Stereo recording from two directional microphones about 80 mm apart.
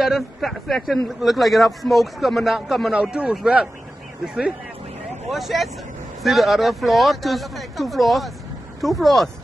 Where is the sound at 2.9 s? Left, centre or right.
Centre.